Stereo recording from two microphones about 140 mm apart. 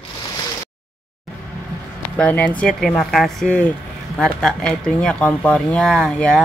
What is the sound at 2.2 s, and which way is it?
Speech, 10° left (ahead or behind).